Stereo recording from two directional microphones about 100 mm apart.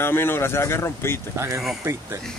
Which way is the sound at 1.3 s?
30° right (ahead or behind).